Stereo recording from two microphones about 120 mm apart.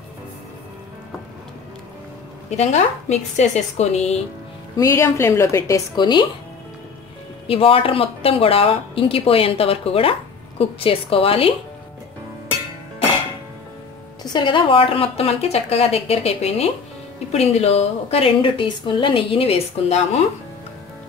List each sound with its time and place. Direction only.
2.5 s a woman's voice: 70° left (ahead or behind)
4.7 s a woman's voice: 25° left (ahead or behind)
5.9 s speech: 40° left (ahead or behind)
7.4 s a woman's voice: 50° left (ahead or behind)
14.3 s a woman's voice: 40° left (ahead or behind); by 20.2 s 60° left (ahead or behind)